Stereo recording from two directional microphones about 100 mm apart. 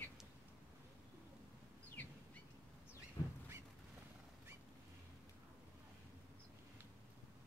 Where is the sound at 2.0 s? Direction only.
15° left (ahead or behind).